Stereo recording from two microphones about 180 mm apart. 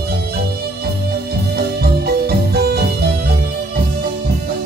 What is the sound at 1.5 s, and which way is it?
Music, 60° right (ahead or behind).